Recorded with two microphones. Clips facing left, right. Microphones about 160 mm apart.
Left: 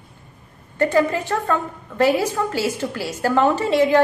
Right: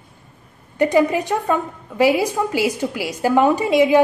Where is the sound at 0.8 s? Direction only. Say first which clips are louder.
Right 2 dB; 15° right (ahead or behind).